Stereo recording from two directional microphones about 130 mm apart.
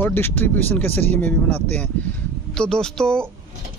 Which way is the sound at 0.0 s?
15° left (ahead or behind).